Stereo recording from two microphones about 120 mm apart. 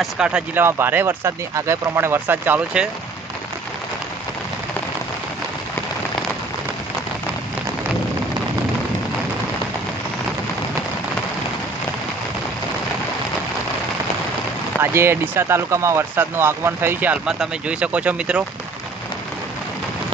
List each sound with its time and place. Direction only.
0.0 s speech: 5° right (ahead or behind)
0.6 s speech: 20° right (ahead or behind)
14.8 s speech: 20° right (ahead or behind)